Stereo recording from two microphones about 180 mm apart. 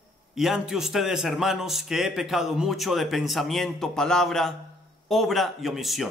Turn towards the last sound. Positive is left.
turn(degrees=0)  # may be behind; listen again after turning